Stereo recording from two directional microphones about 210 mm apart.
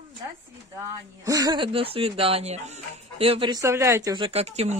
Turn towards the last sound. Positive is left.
turn(degrees=-30)  # may be behind; listen again after turning